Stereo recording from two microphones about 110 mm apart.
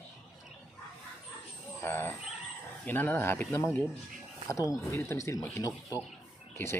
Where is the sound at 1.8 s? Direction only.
20° left (ahead or behind).